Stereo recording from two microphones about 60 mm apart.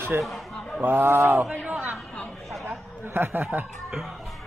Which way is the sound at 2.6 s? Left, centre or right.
Right.